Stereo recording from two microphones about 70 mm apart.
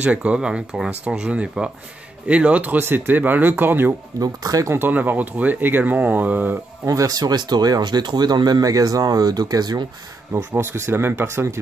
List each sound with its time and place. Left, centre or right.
0.0 s speech: centre
2.8 s speech: right
4.2 s speech: right
4.7 s speech: right
6.9 s speech: right
10.3 s speech: right